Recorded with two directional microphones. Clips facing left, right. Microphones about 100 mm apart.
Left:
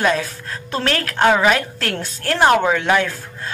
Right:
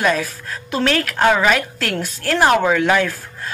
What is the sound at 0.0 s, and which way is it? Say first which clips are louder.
Speech: even; 30° left (ahead or behind).